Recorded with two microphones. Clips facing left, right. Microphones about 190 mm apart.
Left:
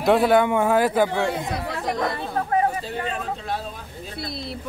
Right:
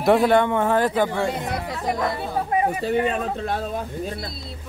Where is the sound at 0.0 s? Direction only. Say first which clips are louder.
Even; centre (ahead or behind).